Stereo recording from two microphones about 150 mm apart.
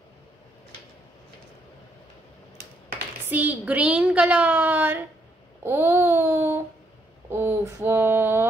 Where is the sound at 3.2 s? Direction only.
10° right (ahead or behind).